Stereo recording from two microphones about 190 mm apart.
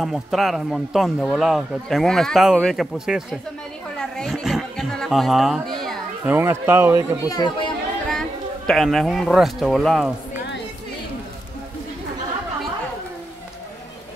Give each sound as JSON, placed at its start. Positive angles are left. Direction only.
{"t": 0.0, "sound": "a man's voice", "side_deg": 0}
{"t": 4.0, "sound": "a sound", "side_deg": 0}
{"t": 6.3, "sound": "speech", "side_deg": -10}
{"t": 7.2, "sound": "speech", "side_deg": 25}
{"t": 8.6, "sound": "a man's voice", "side_deg": 0}